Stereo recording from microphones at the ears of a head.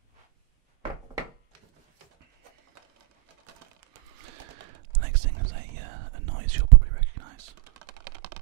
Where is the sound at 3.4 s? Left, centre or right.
Right.